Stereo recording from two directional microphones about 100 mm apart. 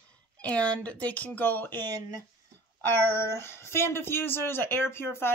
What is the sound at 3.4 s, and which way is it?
Speech, 25° left (ahead or behind).